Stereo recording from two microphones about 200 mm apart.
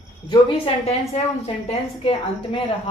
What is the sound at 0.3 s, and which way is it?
A woman's voice, 25° left (ahead or behind).